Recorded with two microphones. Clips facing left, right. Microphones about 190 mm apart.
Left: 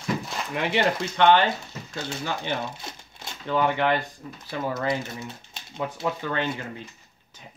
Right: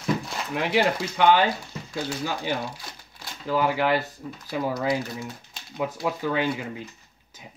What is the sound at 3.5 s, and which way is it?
Speech, 5° right (ahead or behind).